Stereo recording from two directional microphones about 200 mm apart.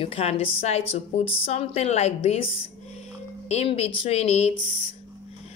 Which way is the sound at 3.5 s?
30° left (ahead or behind).